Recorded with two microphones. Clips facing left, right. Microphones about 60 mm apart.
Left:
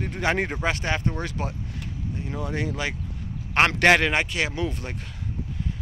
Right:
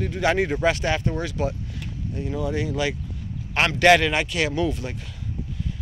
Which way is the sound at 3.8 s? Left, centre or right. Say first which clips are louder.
Right 6 dB; left.